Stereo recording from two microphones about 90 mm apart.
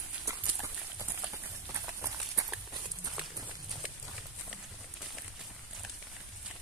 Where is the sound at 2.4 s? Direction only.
35° right (ahead or behind).